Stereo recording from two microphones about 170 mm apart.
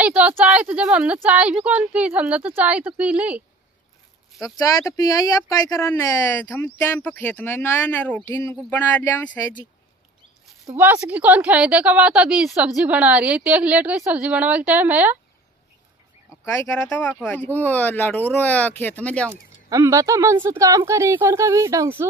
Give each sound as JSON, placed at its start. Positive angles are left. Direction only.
{"t": 0.0, "sound": "a woman's voice", "side_deg": -5}
{"t": 4.6, "sound": "speech", "side_deg": 20}
{"t": 10.8, "sound": "a woman's voice", "side_deg": -10}
{"t": 16.7, "sound": "speech", "side_deg": 10}
{"t": 19.7, "sound": "a woman's voice", "side_deg": -15}